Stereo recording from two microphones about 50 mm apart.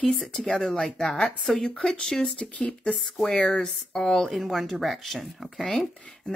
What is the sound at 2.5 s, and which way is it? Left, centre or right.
Speech, left.